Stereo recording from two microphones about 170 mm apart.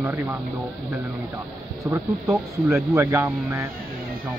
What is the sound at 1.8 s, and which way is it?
Speech, 10° right (ahead or behind).